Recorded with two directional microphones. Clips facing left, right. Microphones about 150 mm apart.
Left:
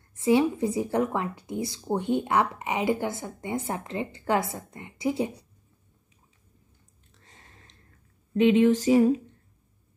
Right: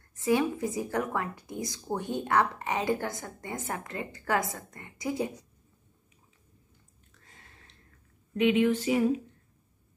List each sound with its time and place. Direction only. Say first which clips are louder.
0.2 s a woman's voice: left 4 dB; 20° left (ahead or behind)
7.2 s a sound: left 2 dB; 35° left (ahead or behind)
8.4 s speech: left 5 dB; 30° left (ahead or behind)